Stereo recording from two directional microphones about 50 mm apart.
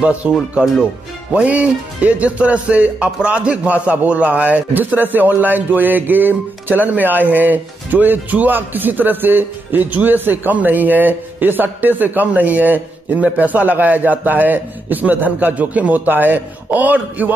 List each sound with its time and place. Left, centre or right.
0.0 s speech: right
1.3 s speech: right